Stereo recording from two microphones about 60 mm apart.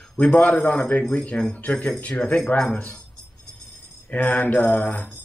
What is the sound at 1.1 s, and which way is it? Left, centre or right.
Speech, centre.